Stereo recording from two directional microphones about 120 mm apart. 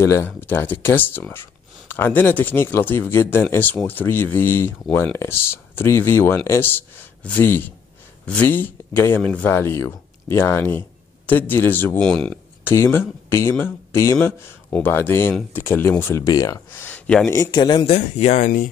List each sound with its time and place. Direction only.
0.0 s speech: 25° left (ahead or behind); by 12.4 s 10° left (ahead or behind)
12.6 s speech: 20° left (ahead or behind)
16.8 s a sound: 10° left (ahead or behind)
17.5 s speech: 35° left (ahead or behind)
17.8 s speech: 65° left (ahead or behind); by 18.7 s 90° left